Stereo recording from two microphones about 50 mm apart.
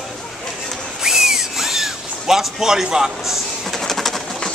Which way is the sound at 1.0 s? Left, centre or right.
Centre.